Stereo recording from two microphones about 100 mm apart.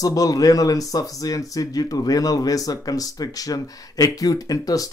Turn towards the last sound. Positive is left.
turn(degrees=35)  # may be behind; listen again after turning